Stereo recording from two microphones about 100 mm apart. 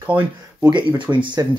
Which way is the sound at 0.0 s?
20° right (ahead or behind).